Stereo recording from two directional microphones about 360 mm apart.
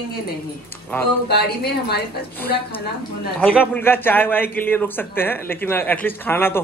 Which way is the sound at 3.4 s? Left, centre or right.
Centre.